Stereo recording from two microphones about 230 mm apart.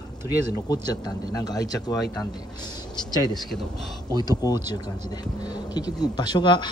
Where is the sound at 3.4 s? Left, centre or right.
Centre.